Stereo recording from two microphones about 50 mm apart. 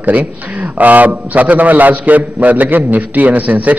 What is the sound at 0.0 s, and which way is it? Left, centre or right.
A man's voice, right.